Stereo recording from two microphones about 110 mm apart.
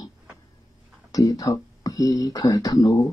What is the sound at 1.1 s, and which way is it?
Speech, 40° left (ahead or behind).